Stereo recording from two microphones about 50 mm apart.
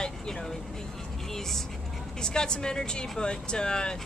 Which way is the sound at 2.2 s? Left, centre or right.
Centre.